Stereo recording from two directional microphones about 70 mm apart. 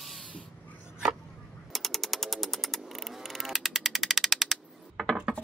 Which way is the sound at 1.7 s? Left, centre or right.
Centre.